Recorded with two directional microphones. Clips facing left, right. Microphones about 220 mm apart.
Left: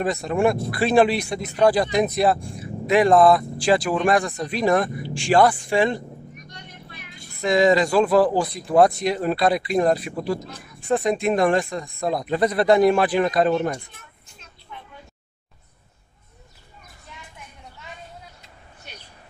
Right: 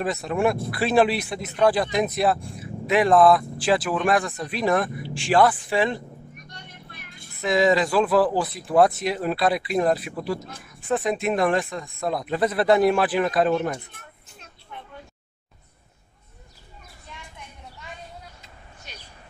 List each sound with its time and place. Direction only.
0.0 s speech: centre (ahead or behind)
7.3 s speech: 5° right (ahead or behind)
14.7 s a sound: 55° right (ahead or behind)